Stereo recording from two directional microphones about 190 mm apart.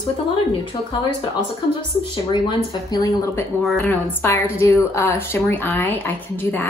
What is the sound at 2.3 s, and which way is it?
A woman's voice, 25° left (ahead or behind).